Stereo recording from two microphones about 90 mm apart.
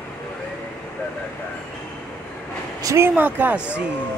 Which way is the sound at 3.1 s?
20° right (ahead or behind).